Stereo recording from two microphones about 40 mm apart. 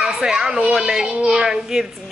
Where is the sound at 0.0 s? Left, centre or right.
Centre.